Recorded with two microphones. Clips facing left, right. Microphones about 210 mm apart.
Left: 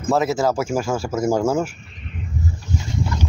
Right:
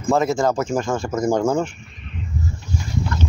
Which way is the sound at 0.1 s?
5° left (ahead or behind).